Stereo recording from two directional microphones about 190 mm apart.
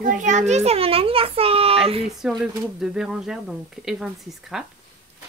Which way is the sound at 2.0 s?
Centre (ahead or behind).